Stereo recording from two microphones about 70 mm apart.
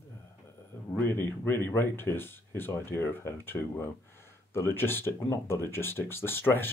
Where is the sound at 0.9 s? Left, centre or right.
Left.